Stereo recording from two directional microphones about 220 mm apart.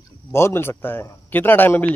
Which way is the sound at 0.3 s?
10° left (ahead or behind).